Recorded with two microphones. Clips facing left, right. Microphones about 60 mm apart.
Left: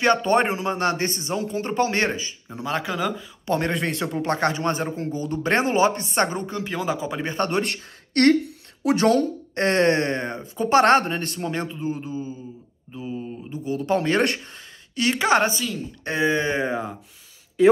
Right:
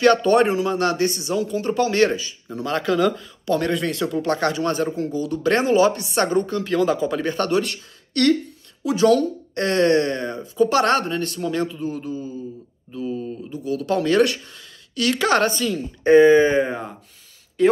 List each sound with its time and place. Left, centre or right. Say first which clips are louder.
0.0 s speech: right 4 dB; left
2.5 s speech: right 5 dB; centre
3.4 s speech: right 2 dB; left
6.3 s speech: right 7 dB; centre
7.6 s a woman's voice: left 1 dB; left
9.6 s speech: right 2 dB; left
15.0 s speech: right 1 dB; left
15.6 s speech: right 7 dB; centre